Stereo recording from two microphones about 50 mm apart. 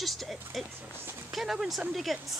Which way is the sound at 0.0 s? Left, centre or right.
Centre.